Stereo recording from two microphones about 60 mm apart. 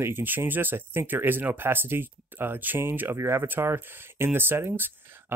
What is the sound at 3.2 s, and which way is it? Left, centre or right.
Speech, right.